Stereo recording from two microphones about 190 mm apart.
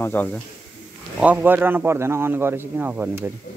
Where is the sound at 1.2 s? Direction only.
10° right (ahead or behind).